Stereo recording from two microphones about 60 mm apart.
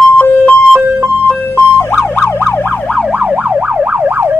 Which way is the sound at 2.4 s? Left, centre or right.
Left.